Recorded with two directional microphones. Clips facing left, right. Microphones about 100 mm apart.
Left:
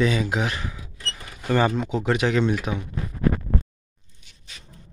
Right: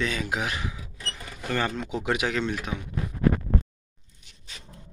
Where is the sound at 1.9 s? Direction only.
10° right (ahead or behind).